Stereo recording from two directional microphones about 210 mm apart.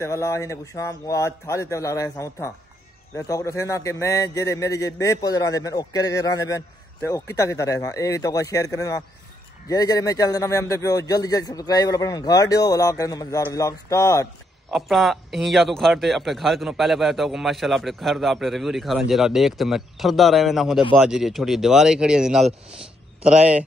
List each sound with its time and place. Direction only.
0.0 s a man's voice: 15° left (ahead or behind)
14.7 s speech: centre (ahead or behind)